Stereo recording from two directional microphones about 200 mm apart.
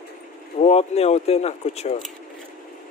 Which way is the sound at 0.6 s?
30° left (ahead or behind).